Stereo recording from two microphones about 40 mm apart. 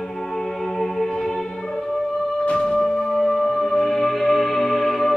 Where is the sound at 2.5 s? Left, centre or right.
Left.